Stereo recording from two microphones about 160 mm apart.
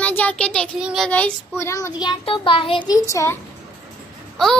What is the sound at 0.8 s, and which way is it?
Child singing, 5° right (ahead or behind).